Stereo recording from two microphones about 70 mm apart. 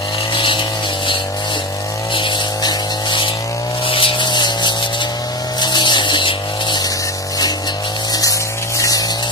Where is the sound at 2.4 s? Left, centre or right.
Left.